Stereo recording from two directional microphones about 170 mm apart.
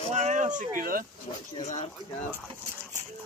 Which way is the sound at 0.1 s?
45° right (ahead or behind).